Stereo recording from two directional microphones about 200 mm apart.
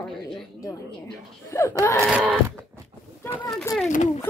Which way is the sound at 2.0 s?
5° right (ahead or behind).